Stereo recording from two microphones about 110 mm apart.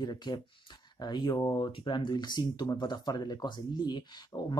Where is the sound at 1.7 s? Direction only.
45° left (ahead or behind).